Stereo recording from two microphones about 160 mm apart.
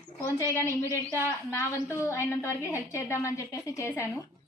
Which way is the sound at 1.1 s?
15° left (ahead or behind).